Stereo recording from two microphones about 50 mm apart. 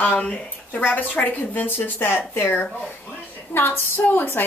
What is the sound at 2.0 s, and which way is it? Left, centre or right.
Speech, left.